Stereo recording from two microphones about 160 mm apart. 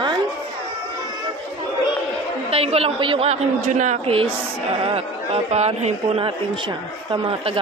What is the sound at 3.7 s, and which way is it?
Speech, 50° right (ahead or behind).